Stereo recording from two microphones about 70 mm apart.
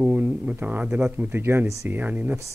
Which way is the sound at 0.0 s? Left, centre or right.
Right.